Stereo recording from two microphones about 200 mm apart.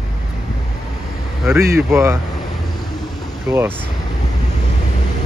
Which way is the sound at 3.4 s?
10° right (ahead or behind).